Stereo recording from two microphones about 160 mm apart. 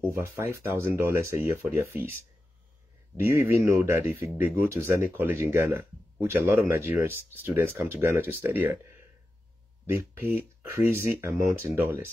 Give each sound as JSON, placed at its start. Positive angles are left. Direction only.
{"t": 0.0, "sound": "speech", "side_deg": -15}
{"t": 3.2, "sound": "speech", "side_deg": -15}
{"t": 9.8, "sound": "speech", "side_deg": -10}